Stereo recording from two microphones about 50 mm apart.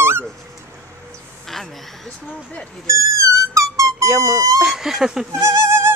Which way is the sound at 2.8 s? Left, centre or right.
Right.